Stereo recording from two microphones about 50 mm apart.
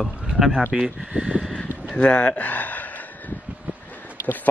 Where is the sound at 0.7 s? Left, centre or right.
Centre.